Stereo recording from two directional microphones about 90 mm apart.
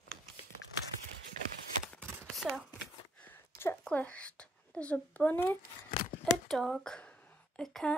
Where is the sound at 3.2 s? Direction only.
25° left (ahead or behind).